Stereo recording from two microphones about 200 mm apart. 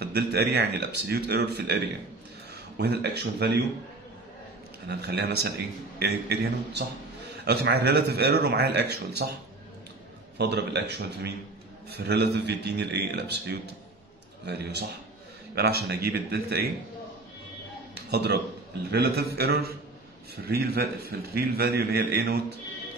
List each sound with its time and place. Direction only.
0.0 s speech: 55° right (ahead or behind)
2.8 s speech: 55° right (ahead or behind)
4.8 s a man's voice: 55° right (ahead or behind)
10.3 s a man's voice: 55° right (ahead or behind)
18.1 s a man's voice: 55° right (ahead or behind)